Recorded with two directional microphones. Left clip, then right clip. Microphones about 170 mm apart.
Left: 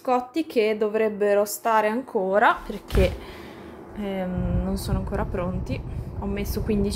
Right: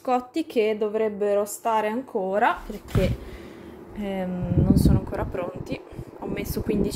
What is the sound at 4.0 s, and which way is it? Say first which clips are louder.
Speech: left 1 dB; 5° right (ahead or behind).